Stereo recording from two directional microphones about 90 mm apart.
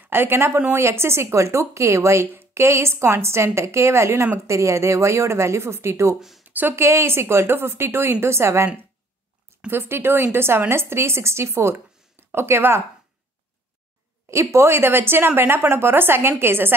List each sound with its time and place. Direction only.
0.0 s a woman's voice: 25° right (ahead or behind)
6.1 s speech: 5° right (ahead or behind)
6.4 s speech: 20° right (ahead or behind)
9.7 s speech: 25° right (ahead or behind)
14.3 s speech: 30° right (ahead or behind)